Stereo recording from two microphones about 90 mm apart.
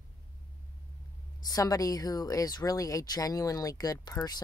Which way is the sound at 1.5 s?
40° left (ahead or behind).